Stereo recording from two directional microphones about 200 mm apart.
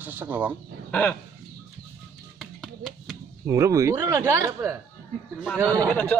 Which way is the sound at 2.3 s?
Centre (ahead or behind).